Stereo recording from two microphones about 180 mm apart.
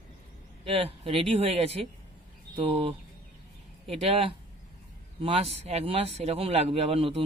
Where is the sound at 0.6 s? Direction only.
30° right (ahead or behind).